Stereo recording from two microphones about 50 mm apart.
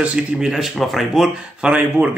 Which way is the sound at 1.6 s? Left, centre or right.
Right.